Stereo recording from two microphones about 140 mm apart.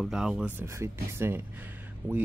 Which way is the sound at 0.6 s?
20° right (ahead or behind).